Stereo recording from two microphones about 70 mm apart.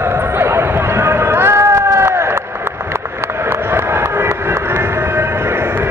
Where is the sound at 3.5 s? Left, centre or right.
Right.